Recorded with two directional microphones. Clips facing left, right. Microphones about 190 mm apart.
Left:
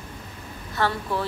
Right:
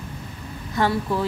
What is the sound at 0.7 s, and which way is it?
Speech, 15° right (ahead or behind).